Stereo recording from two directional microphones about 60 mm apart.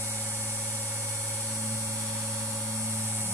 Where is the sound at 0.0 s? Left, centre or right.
Right.